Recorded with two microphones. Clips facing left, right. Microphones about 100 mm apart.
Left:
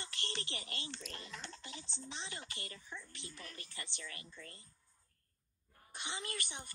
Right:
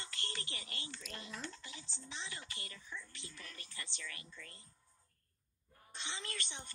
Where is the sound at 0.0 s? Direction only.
20° left (ahead or behind).